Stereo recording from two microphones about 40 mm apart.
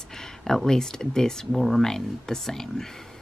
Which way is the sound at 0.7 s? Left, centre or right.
Centre.